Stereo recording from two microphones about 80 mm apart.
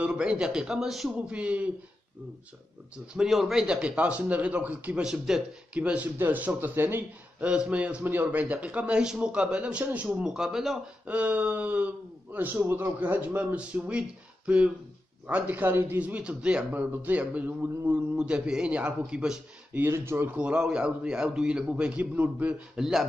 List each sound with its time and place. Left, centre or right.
0.0 s a man's voice: centre
1.3 s a man's voice: centre
3.1 s a man's voice: centre
5.0 s a man's voice: centre
5.8 s a man's voice: centre
7.4 s a man's voice: centre
8.0 s a man's voice: right; by 10.8 s centre
11.1 s a man's voice: centre
19.9 s speech: right
20.2 s a man's voice: centre
22.8 s a man's voice: centre